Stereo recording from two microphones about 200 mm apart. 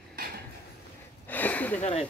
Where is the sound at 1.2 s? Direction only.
10° left (ahead or behind).